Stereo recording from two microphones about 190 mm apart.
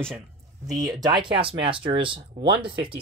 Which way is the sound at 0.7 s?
20° right (ahead or behind).